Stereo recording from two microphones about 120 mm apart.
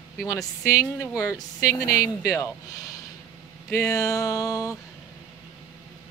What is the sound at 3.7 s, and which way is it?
Speech, 25° left (ahead or behind).